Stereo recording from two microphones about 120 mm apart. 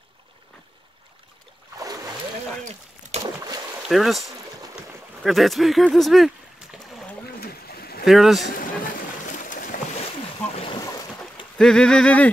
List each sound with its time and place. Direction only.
3.1 s boat: 65° right (ahead or behind)
3.9 s speech: centre (ahead or behind)
8.0 s speech: centre (ahead or behind)
9.2 s boat: 90° left
10.5 s boat: 55° left (ahead or behind)
11.5 s speech: 5° left (ahead or behind)